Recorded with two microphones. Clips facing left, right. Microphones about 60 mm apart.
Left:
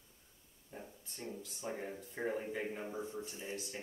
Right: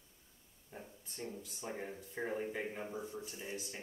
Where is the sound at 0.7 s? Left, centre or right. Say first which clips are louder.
Left 1 dB; centre.